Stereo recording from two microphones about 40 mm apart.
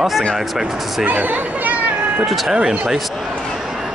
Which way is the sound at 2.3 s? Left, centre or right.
Centre.